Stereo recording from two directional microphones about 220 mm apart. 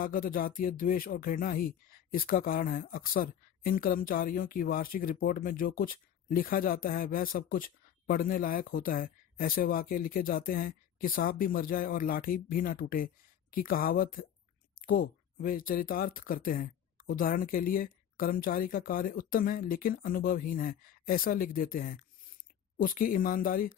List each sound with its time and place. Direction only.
0.0 s speech: 40° left (ahead or behind)